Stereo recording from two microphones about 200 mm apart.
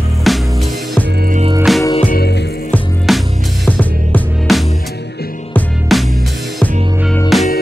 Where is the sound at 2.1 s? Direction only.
50° left (ahead or behind).